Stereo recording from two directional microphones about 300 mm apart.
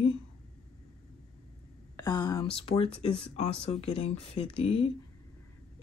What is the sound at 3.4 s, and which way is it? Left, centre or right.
Speech, left.